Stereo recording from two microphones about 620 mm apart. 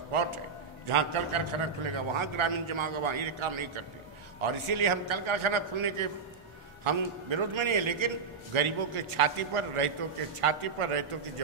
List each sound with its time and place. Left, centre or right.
0.1 s a man's voice: right